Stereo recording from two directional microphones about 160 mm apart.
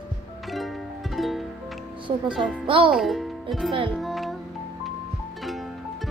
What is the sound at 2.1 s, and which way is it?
Speech, 30° right (ahead or behind).